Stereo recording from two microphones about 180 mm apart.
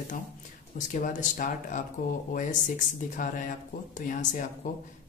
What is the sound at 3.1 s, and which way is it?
Speech, 45° left (ahead or behind).